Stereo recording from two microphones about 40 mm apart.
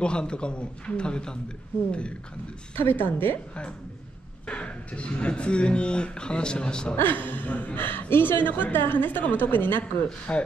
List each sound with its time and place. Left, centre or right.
0.0 s speech: left
2.8 s a woman's voice: left
3.1 s a woman's voice: left
4.5 s speech: left
7.0 s a woman's voice: left
10.0 s speech: left